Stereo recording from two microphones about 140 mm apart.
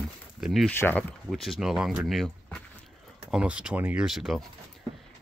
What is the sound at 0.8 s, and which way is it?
Speech, 10° left (ahead or behind).